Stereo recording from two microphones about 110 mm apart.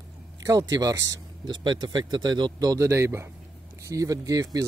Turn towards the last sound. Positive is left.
turn(degrees=-30)  # may be behind; listen again after turning